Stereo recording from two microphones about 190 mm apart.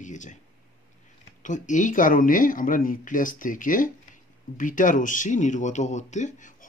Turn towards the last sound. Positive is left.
turn(degrees=40)  # may be behind; listen again after turning